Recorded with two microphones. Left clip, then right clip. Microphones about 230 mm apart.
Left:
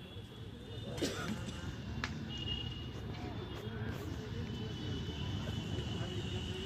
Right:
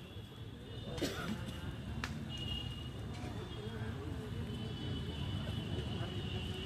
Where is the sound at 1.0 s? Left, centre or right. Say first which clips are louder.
Left 1 dB; right.